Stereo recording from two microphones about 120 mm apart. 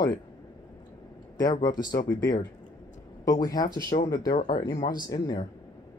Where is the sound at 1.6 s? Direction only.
30° left (ahead or behind).